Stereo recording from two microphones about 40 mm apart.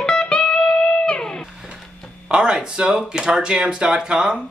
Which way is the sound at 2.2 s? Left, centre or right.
Right.